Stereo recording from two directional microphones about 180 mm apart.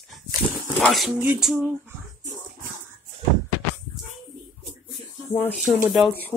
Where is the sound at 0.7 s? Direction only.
Centre (ahead or behind).